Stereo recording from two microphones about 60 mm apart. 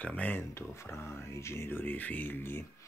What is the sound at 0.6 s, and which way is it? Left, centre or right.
Speech, left.